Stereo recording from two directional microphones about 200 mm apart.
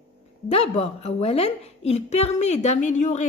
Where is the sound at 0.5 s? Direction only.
30° left (ahead or behind).